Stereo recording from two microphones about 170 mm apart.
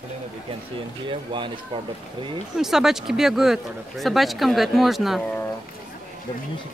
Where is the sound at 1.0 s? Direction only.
30° right (ahead or behind).